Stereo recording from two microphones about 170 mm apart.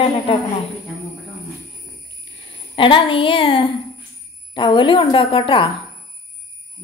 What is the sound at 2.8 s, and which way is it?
A woman's voice, 30° left (ahead or behind).